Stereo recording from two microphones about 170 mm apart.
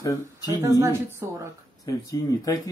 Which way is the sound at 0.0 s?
20° left (ahead or behind).